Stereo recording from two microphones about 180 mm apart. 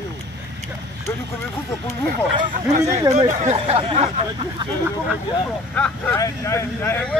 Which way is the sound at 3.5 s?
30° right (ahead or behind).